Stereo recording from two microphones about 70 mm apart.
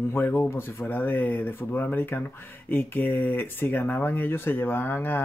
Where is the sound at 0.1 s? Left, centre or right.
Left.